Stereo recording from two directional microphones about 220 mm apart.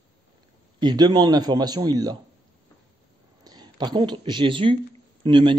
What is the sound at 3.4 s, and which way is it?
Speech, 20° right (ahead or behind).